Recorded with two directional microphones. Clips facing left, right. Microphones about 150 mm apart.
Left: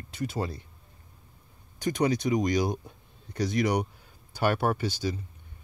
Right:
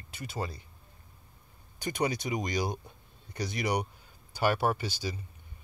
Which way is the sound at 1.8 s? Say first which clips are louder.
Left 5 dB; 5° right (ahead or behind).